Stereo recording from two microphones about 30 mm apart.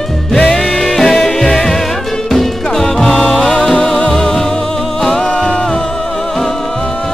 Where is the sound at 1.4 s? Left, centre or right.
Centre.